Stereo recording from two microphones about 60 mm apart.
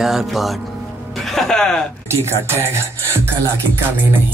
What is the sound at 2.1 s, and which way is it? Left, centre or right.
Speech, right.